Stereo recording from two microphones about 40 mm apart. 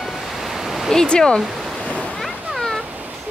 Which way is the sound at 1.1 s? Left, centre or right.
Left.